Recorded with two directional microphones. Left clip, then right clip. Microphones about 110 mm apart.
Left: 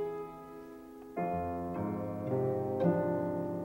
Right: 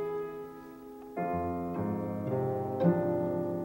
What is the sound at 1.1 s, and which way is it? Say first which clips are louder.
Music: right 2 dB; 35° left (ahead or behind).